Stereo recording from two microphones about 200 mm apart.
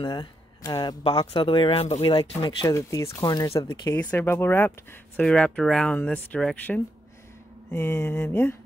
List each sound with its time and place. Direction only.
0.0 s speech: 20° left (ahead or behind)